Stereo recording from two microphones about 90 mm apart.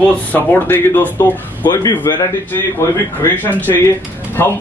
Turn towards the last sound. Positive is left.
turn(degrees=25)  # may be behind; listen again after turning